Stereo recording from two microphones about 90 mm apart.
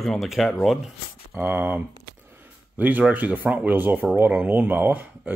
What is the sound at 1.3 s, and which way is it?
Speech, 25° right (ahead or behind).